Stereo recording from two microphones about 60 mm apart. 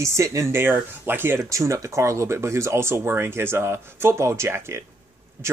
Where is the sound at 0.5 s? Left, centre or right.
Right.